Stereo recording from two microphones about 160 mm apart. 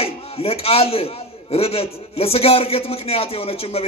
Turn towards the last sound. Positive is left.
turn(degrees=35)  # may be behind; listen again after turning